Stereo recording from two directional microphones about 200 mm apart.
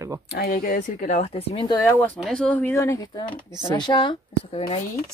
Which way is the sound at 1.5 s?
25° left (ahead or behind).